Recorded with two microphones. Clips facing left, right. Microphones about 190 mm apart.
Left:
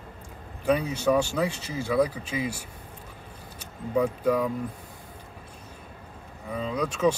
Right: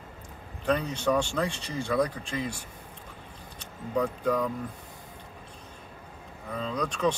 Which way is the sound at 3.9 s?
10° left (ahead or behind).